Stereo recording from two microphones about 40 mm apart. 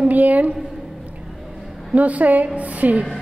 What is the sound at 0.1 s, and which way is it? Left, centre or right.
Speech, right.